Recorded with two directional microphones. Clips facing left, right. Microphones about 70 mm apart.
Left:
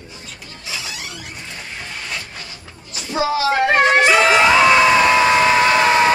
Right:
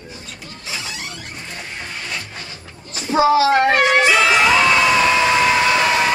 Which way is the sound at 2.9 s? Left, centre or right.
Right.